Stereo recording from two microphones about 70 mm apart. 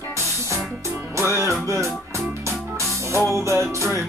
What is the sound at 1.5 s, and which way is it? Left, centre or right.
Music, right.